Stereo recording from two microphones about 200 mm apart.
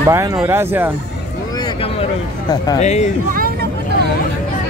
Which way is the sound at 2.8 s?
35° left (ahead or behind).